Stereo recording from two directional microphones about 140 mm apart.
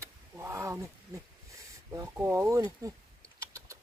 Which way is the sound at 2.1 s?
20° right (ahead or behind).